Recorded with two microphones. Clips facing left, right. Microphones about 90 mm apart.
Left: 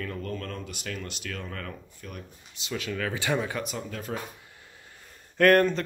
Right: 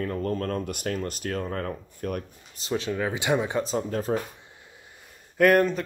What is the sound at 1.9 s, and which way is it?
Speech, 50° right (ahead or behind).